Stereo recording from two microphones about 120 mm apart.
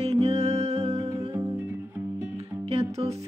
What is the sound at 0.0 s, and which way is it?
Music, 60° right (ahead or behind).